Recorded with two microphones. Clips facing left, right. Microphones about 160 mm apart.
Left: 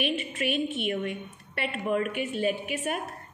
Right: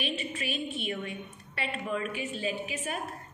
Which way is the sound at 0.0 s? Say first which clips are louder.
Left 5 dB; 55° left (ahead or behind).